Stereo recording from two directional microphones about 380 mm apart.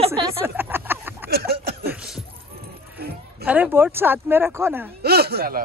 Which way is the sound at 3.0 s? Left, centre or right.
Right.